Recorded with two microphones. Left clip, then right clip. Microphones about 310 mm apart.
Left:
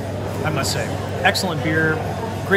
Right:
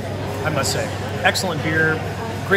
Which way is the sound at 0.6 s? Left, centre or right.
Centre.